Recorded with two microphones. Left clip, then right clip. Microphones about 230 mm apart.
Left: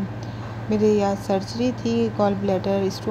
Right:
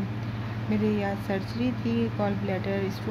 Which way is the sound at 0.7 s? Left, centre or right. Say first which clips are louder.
Left 9 dB; centre.